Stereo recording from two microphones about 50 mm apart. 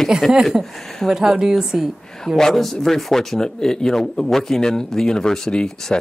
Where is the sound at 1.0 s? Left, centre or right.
Centre.